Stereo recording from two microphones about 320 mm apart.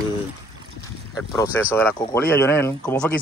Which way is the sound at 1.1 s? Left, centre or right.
Centre.